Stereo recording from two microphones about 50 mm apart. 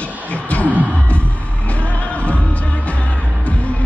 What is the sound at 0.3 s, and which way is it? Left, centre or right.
Music, left.